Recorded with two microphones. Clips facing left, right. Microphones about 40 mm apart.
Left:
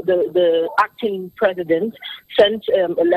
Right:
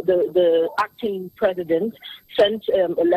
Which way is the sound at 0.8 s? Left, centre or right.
Left.